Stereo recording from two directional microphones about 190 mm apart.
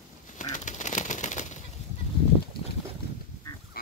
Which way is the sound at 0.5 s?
40° left (ahead or behind).